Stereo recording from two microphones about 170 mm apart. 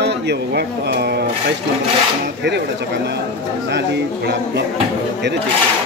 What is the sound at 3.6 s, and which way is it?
Speech, 85° right.